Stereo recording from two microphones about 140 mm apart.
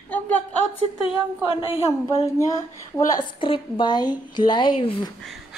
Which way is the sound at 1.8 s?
20° left (ahead or behind).